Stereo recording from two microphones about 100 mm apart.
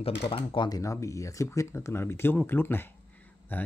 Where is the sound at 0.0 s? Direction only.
70° left (ahead or behind).